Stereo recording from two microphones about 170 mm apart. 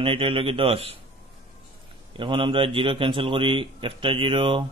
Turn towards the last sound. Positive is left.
turn(degrees=-30)  # may be behind; listen again after turning